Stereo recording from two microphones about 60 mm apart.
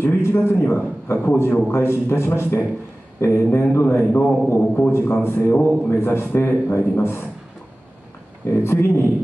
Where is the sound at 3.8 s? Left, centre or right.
Left.